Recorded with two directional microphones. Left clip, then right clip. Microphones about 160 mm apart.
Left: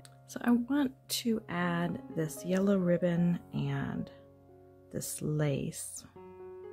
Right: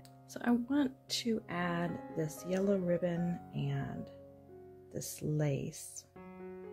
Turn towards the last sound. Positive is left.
turn(degrees=25)  # may be behind; listen again after turning